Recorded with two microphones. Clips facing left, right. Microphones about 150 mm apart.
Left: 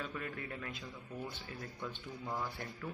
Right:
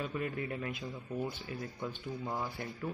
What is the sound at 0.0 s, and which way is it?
A man's voice, 20° right (ahead or behind).